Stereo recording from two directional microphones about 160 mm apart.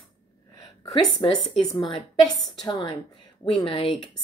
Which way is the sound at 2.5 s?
25° left (ahead or behind).